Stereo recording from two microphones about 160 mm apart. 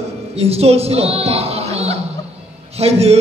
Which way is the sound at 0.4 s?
40° right (ahead or behind).